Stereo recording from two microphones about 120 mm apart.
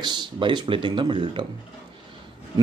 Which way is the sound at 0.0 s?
40° right (ahead or behind).